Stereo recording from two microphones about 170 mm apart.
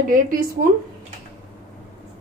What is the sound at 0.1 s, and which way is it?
Speech, 60° right (ahead or behind).